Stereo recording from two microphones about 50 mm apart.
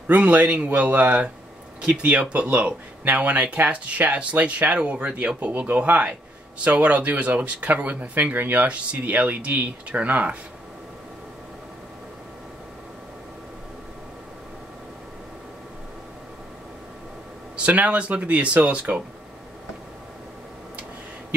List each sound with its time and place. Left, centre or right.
0.0 s speech: right
3.1 s speech: right
8.6 s speech: right
17.6 s speech: right